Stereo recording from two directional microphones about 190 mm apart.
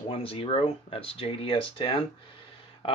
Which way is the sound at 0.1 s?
30° left (ahead or behind).